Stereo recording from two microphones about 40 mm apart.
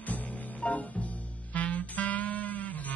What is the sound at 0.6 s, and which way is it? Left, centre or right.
Music, left.